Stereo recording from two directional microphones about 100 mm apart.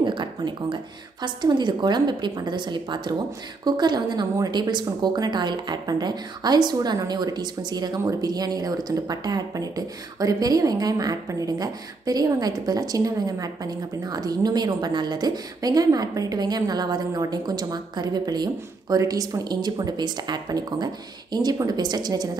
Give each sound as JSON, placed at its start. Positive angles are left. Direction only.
{"t": 0.0, "sound": "a woman's voice", "side_deg": -50}